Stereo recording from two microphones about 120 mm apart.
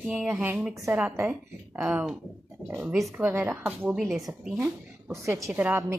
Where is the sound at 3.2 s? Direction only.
20° right (ahead or behind).